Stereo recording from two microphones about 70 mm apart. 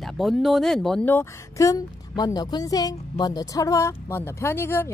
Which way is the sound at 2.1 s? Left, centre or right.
Left.